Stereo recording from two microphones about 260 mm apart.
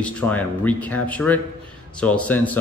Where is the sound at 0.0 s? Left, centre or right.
Centre.